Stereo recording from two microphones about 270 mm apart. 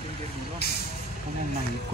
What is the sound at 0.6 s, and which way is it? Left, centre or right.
Vehicle, left.